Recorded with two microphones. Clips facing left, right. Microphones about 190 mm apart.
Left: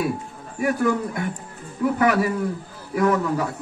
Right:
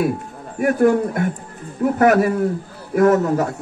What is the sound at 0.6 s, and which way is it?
A man's voice, 50° right (ahead or behind).